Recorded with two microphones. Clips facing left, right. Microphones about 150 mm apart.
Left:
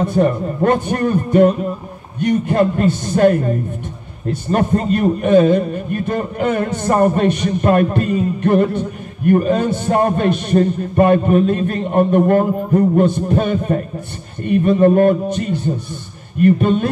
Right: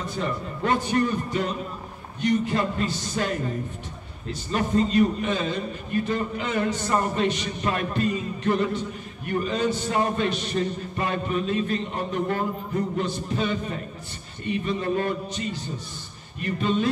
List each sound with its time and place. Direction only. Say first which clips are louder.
0.0 s a man's voice: left 13 dB; 55° left (ahead or behind)